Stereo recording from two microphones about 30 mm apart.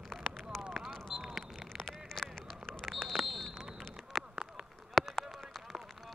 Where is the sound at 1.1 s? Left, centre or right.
Centre.